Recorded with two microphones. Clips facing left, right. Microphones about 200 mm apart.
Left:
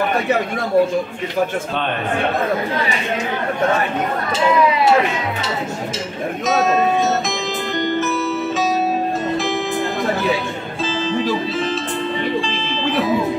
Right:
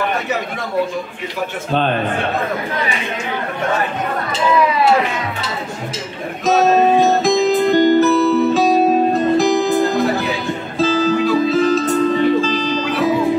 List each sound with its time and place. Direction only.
6.4 s music: 35° right (ahead or behind)